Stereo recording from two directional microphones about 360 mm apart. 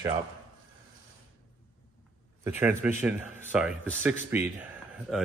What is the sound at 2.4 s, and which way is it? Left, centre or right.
A man's voice, centre.